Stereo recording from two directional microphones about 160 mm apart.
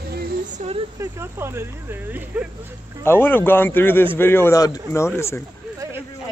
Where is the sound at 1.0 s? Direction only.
15° right (ahead or behind).